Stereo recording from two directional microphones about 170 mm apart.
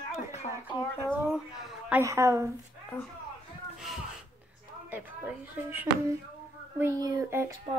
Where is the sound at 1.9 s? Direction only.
15° right (ahead or behind).